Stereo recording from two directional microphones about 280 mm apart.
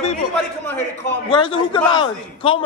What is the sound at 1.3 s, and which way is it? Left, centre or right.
A man's voice, centre.